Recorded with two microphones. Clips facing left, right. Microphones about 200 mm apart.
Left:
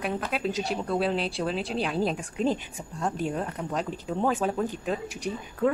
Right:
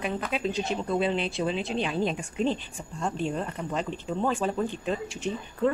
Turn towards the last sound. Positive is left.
turn(degrees=10)  # may be behind; listen again after turning